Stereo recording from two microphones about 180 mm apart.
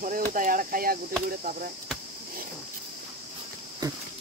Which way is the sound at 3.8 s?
20° right (ahead or behind).